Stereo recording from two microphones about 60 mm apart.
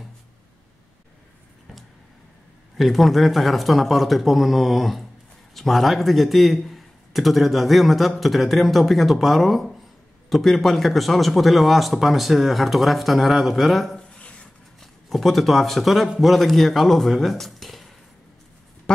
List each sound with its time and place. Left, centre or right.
2.8 s a man's voice: centre
13.9 s a sound: centre
14.8 s a man's voice: centre